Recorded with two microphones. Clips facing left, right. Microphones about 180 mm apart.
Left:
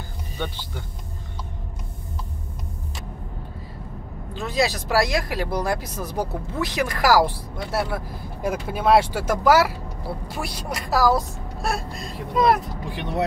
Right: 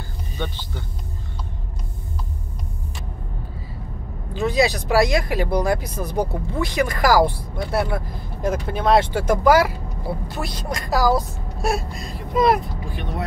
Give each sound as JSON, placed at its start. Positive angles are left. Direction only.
{"t": 0.4, "sound": "speech", "side_deg": 10}
{"t": 4.3, "sound": "speech", "side_deg": 0}
{"t": 12.9, "sound": "speech", "side_deg": 70}